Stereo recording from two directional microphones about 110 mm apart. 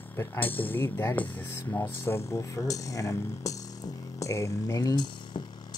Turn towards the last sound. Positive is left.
turn(degrees=40)  # may be behind; listen again after turning